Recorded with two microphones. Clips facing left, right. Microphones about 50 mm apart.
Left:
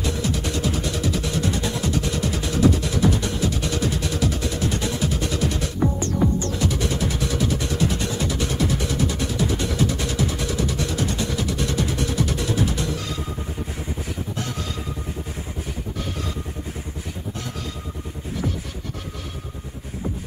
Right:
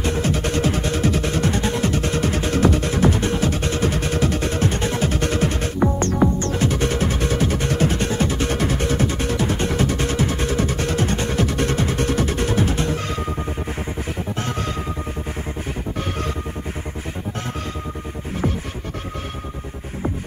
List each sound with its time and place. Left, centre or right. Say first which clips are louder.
0.0 s music: right 4 dB; right